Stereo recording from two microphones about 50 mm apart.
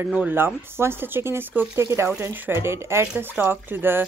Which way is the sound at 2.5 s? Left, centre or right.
Right.